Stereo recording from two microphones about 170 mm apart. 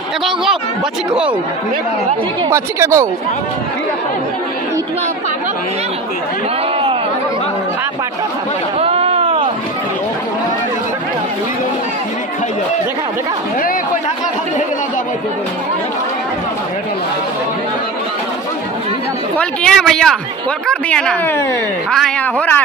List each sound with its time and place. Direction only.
2.5 s speech: 15° right (ahead or behind)
8.7 s a sound: 35° right (ahead or behind)
19.3 s speech: 5° left (ahead or behind)